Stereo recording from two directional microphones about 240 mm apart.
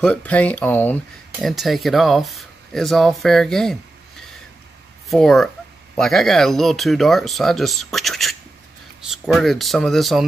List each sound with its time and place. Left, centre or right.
0.0 s speech: centre
5.1 s speech: centre